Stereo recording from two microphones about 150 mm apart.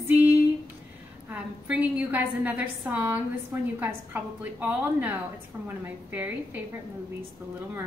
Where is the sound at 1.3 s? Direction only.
10° right (ahead or behind).